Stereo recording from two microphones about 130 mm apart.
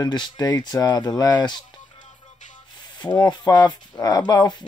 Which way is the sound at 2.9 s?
30° left (ahead or behind).